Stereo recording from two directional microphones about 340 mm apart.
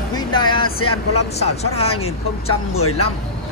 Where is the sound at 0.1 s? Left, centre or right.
Centre.